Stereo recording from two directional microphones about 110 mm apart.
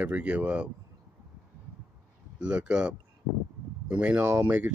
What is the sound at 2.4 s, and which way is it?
Speech, 10° right (ahead or behind).